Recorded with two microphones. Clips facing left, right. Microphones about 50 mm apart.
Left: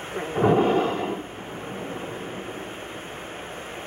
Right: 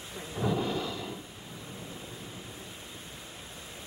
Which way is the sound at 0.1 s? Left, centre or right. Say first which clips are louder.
Left 11 dB; left.